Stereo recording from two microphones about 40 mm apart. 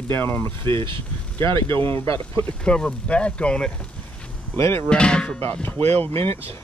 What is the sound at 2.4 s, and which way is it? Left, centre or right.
Speech, left.